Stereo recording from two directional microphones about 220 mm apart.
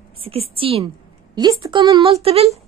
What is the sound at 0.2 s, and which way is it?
A woman's voice, 25° right (ahead or behind).